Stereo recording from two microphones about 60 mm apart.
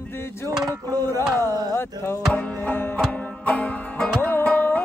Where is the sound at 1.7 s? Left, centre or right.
Left.